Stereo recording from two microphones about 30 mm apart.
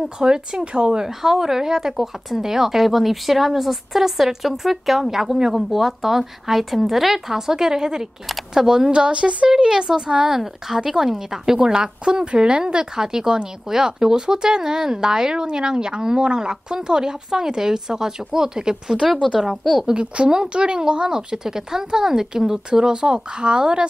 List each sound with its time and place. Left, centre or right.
0.2 s speech: right
1.0 s speech: centre
8.9 s speech: right
10.4 s speech: centre; by 12.8 s right
12.9 s speech: centre
19.5 s a woman's voice: centre
19.9 s speech: right